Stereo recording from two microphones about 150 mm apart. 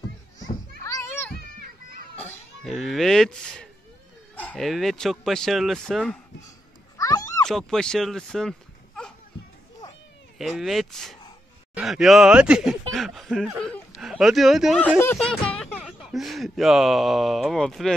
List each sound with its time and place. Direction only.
0.4 s children playing: 25° left (ahead or behind)
2.6 s speech: centre (ahead or behind)
7.0 s a sound: 25° left (ahead or behind)
7.4 s speech: 5° left (ahead or behind)
10.6 s speech: centre (ahead or behind)
14.8 s speech: 15° left (ahead or behind)
15.1 s speech: 5° left (ahead or behind)